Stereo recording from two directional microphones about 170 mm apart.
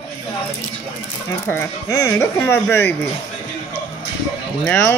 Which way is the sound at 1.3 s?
15° left (ahead or behind).